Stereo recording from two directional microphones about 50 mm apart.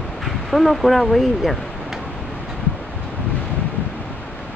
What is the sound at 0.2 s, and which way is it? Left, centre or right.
Speech, centre.